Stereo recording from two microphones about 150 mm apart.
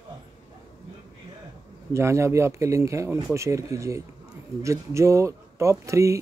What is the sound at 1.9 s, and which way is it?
Speech, 20° right (ahead or behind).